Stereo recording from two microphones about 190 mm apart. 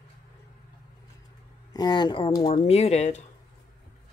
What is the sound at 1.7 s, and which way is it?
Speech, 20° left (ahead or behind).